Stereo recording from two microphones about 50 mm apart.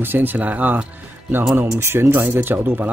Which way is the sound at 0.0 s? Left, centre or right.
Right.